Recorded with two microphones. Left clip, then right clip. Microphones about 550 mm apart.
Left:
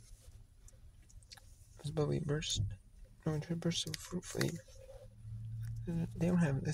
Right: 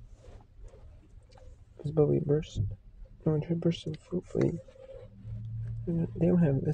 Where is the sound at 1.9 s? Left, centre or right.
Left.